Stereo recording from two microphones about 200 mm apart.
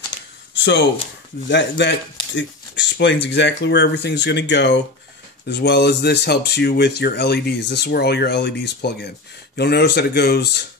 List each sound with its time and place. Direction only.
0.6 s speech: 60° left (ahead or behind)